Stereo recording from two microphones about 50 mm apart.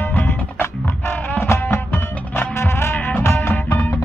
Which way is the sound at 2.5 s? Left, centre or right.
Left.